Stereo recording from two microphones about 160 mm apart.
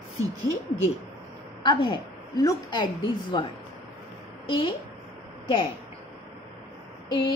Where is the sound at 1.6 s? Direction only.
30° left (ahead or behind).